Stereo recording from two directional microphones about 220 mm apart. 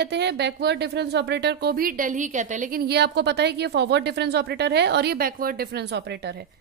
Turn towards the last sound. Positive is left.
turn(degrees=-50)  # may be behind; listen again after turning